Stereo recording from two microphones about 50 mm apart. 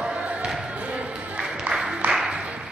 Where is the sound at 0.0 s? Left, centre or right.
Right.